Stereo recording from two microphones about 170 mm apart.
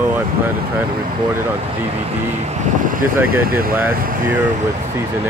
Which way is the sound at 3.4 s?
60° right (ahead or behind).